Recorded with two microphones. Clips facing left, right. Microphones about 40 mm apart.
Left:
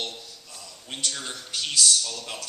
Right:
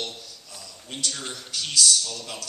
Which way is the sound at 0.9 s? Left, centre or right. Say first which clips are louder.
Even; centre.